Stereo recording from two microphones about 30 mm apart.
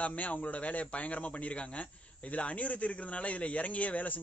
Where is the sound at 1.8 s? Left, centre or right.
Left.